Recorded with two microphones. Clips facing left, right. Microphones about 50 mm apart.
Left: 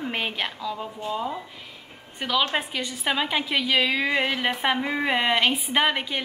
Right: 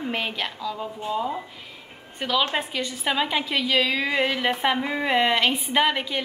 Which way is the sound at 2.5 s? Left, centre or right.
Centre.